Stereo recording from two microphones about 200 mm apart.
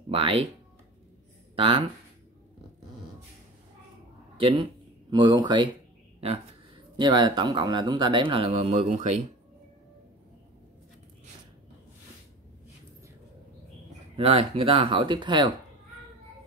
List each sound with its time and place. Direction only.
0.1 s speech: 25° right (ahead or behind)
1.5 s speech: 25° right (ahead or behind)
4.4 s speech: 25° right (ahead or behind)
7.0 s speech: 20° right (ahead or behind)
14.1 s speech: 30° right (ahead or behind)